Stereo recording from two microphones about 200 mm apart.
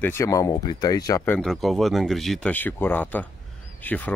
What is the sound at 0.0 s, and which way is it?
Speech, 15° left (ahead or behind).